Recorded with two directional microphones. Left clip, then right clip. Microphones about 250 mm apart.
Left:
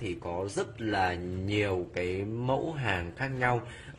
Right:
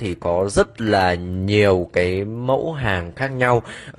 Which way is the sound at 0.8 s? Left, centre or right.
Right.